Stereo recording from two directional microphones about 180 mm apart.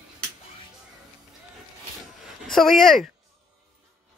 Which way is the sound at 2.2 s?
Centre (ahead or behind).